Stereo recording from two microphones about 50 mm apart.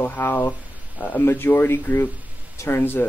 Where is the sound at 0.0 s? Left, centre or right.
Left.